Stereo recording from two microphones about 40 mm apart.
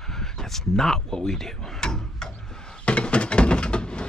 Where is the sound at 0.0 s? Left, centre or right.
Centre.